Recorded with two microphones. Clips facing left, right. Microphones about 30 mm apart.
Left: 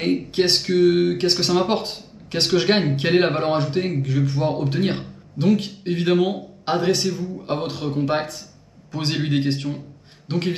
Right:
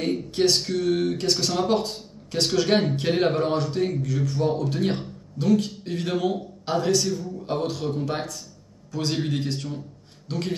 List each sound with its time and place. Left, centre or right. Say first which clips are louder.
0.0 s a man's voice: left 3 dB; left